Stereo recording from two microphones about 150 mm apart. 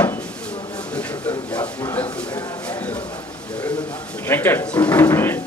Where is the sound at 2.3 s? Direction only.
25° left (ahead or behind).